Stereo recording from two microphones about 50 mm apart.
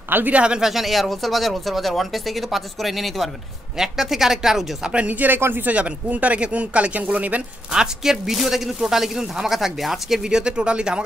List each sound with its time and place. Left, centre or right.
0.3 s speech: right
0.6 s a man's voice: centre
4.9 s speech: right
7.7 s a man's voice: centre